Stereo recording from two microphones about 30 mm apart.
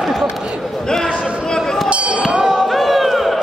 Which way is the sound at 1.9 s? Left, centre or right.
Right.